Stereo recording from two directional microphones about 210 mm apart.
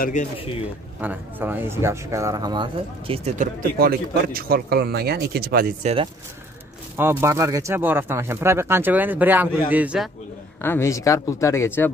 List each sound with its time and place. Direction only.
0.0 s speech: 35° left (ahead or behind)
1.0 s speech: 10° right (ahead or behind); by 3.4 s 30° right (ahead or behind)
3.8 s speech: 45° right (ahead or behind)
7.0 s speech: 10° right (ahead or behind)
10.6 s speech: 10° left (ahead or behind)